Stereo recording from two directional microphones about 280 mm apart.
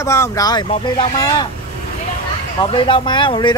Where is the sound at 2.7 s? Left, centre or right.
Centre.